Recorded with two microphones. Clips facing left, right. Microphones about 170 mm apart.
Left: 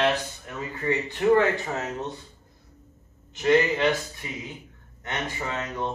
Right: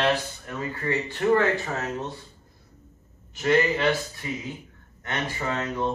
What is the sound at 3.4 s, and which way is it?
Speech, 20° left (ahead or behind).